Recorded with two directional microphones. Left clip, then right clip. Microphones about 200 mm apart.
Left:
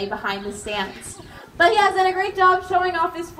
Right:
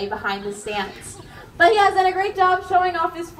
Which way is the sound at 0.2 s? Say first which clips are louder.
Right 1 dB; 35° left (ahead or behind).